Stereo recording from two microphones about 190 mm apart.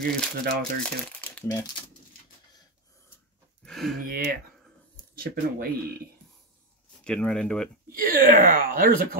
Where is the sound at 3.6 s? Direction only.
Centre (ahead or behind).